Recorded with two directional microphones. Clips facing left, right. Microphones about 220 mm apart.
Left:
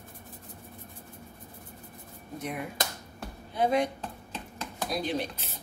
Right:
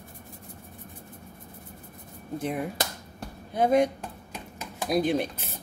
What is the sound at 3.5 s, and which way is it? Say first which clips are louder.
Speech: right 4 dB; 50° right (ahead or behind).